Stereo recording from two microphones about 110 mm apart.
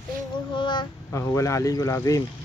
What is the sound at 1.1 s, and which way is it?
Child singing, 25° left (ahead or behind).